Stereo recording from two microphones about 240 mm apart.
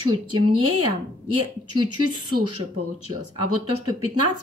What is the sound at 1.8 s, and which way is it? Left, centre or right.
Speech, right.